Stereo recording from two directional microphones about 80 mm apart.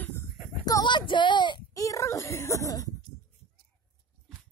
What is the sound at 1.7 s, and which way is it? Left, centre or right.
Speech, left.